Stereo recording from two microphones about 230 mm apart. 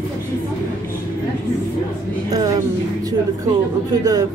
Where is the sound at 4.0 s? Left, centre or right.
Centre.